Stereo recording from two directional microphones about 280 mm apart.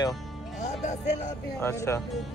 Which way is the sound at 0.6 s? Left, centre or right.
Left.